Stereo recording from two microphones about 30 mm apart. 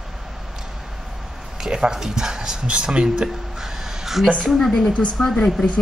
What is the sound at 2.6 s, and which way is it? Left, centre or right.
Speech, right.